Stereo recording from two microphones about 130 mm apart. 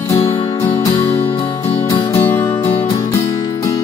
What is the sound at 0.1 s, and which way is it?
Music, 20° left (ahead or behind).